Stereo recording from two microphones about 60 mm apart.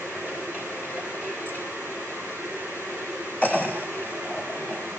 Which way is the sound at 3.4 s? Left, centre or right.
Left.